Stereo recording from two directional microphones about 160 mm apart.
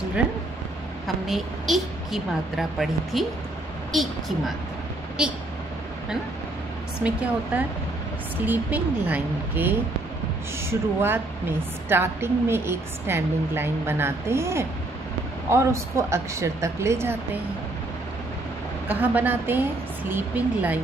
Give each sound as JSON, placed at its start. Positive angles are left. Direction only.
{"t": 1.0, "sound": "a woman's voice", "side_deg": 0}
{"t": 7.0, "sound": "a woman's voice", "side_deg": -10}
{"t": 18.9, "sound": "a woman's voice", "side_deg": -10}